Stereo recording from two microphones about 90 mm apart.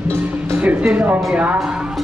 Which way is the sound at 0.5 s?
15° right (ahead or behind).